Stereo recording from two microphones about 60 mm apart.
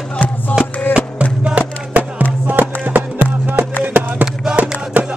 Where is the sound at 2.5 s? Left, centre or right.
Right.